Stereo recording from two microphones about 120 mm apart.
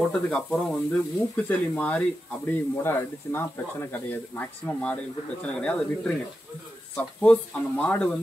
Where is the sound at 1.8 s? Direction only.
10° left (ahead or behind).